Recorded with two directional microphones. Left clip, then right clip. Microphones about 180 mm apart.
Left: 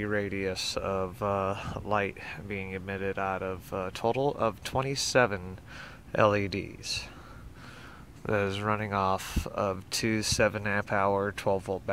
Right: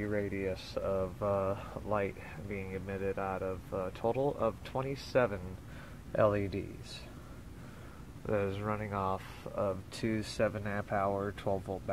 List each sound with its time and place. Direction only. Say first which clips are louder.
0.0 s speech: left 4 dB; 25° left (ahead or behind)
8.3 s speech: left 5 dB; 25° left (ahead or behind)